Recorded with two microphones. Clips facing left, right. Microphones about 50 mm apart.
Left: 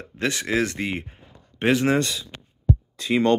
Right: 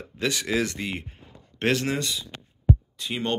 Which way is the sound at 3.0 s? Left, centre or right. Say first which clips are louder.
Left 9 dB; left.